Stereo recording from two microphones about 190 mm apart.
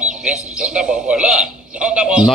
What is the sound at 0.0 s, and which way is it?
A man's voice, 5° right (ahead or behind).